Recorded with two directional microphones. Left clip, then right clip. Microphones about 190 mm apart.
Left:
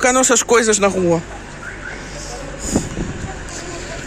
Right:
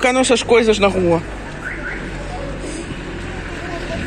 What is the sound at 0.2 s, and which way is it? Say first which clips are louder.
Speech: even; 40° left (ahead or behind).